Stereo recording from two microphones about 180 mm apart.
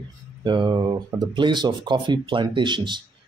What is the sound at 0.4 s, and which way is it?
Speech, 25° right (ahead or behind).